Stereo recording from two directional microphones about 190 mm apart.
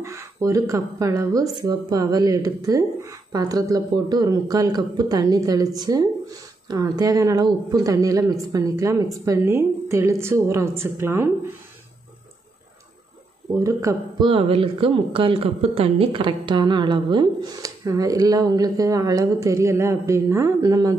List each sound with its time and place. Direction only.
0.0 s speech: 15° right (ahead or behind)
13.5 s speech: 15° right (ahead or behind)